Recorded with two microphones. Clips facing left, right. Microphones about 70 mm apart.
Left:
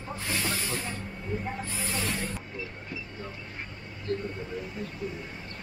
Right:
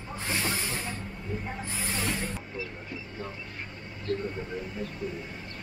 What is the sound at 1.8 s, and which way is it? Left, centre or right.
Snake, centre.